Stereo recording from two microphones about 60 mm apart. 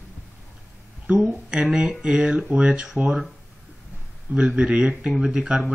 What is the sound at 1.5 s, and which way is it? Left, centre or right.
Speech, centre.